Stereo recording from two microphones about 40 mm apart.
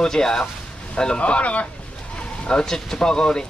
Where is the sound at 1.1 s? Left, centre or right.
Left.